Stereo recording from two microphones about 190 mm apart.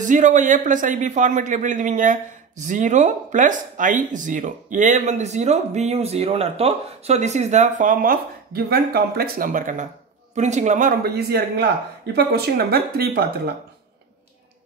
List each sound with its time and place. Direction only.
0.0 s a man's voice: 40° right (ahead or behind)